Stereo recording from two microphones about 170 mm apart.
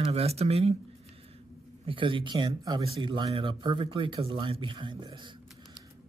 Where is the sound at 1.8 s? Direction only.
30° right (ahead or behind).